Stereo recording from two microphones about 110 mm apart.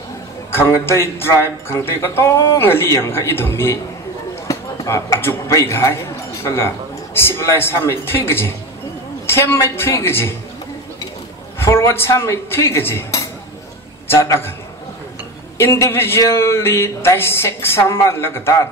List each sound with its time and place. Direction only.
0.5 s speech: 20° left (ahead or behind)
11.5 s a man's voice: 25° left (ahead or behind)
15.5 s speech: 25° left (ahead or behind)